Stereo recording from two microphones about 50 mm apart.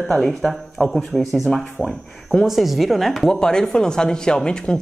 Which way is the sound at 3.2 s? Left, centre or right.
Centre.